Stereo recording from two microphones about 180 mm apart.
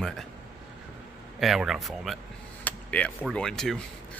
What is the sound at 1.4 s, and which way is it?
Speech, centre (ahead or behind).